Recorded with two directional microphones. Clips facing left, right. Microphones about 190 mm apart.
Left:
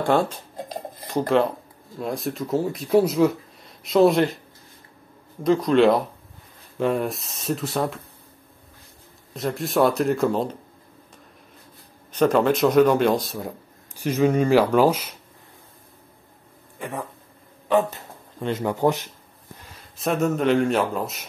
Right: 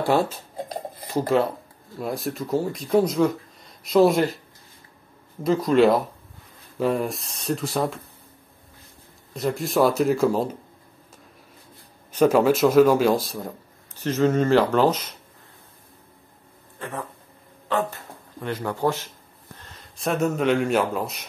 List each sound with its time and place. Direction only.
0.0 s speech: 5° right (ahead or behind)
5.4 s speech: centre (ahead or behind)
9.3 s speech: centre (ahead or behind)
12.1 s speech: 10° right (ahead or behind); by 15.1 s 10° left (ahead or behind)
16.7 s a sound: 15° left (ahead or behind)
17.6 s speech: 20° left (ahead or behind)
19.6 s speech: 5° left (ahead or behind)